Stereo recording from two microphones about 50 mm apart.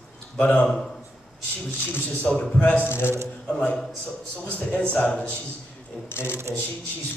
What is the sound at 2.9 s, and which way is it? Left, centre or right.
Speech, left.